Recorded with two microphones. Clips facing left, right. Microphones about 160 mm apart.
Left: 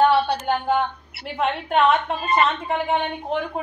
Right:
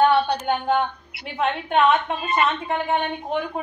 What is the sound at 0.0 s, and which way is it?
A woman's voice, 5° left (ahead or behind).